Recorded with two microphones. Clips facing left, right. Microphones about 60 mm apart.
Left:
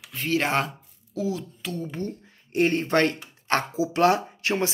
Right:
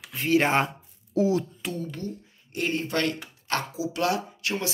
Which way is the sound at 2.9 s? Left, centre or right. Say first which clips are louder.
Left 5 dB; left.